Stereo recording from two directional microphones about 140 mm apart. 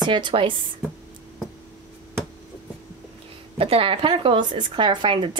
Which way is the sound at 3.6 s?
40° right (ahead or behind).